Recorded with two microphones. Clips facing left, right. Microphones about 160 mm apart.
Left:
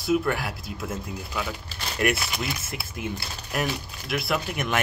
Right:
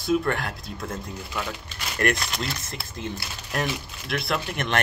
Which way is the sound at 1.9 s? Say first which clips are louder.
Even; 5° left (ahead or behind).